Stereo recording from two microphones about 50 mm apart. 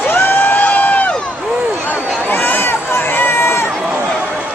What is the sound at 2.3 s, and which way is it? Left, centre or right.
Run, left.